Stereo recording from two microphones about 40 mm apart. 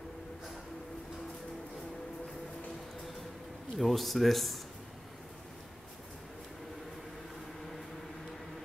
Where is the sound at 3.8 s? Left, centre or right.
Centre.